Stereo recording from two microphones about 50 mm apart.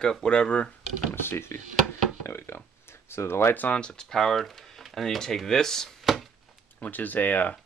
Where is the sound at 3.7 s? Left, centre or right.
Centre.